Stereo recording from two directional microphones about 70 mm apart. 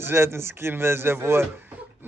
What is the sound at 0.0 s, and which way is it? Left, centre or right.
A man's voice, right.